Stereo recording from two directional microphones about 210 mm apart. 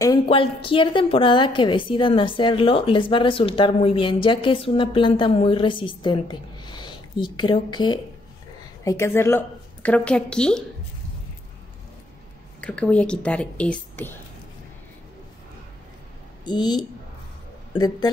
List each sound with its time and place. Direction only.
0.0 s a woman's voice: 20° left (ahead or behind); by 10.6 s 5° left (ahead or behind)
12.5 s a woman's voice: 5° left (ahead or behind)
16.4 s a woman's voice: 20° left (ahead or behind)